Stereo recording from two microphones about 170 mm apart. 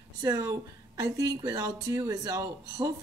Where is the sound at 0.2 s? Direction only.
20° right (ahead or behind).